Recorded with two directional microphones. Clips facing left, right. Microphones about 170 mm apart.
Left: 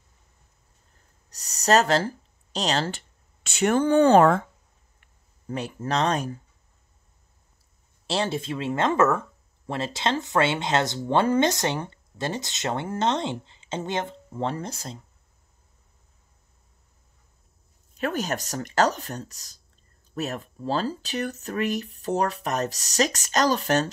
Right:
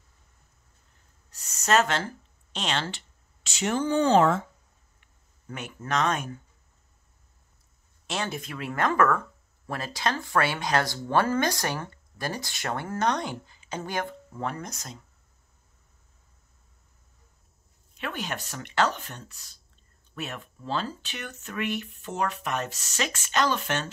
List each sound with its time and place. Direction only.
1.3 s speech: 35° left (ahead or behind); by 4.5 s 55° left (ahead or behind)
5.5 s speech: 30° left (ahead or behind)
8.1 s speech: 30° left (ahead or behind)
17.9 s speech: 40° left (ahead or behind)